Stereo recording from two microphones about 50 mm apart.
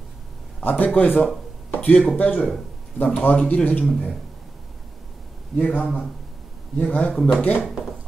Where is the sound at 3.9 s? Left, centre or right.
Centre.